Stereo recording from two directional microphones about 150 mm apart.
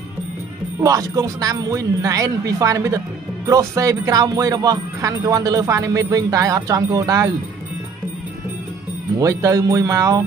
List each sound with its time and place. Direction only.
0.7 s speech: 25° right (ahead or behind)
9.2 s speech: 20° right (ahead or behind)